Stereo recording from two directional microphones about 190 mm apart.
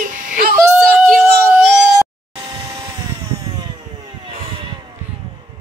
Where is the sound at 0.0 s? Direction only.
45° right (ahead or behind).